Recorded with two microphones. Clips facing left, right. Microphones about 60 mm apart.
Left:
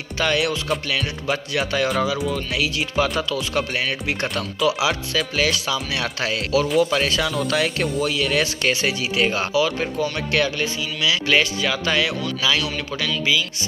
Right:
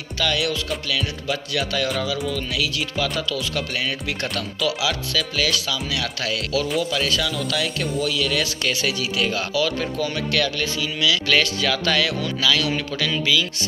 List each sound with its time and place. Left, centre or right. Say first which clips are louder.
0.2 s speech: left 2 dB; left
9.5 s speech: left 2 dB; centre